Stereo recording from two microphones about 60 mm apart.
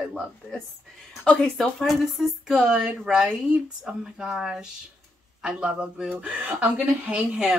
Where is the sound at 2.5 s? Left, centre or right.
Centre.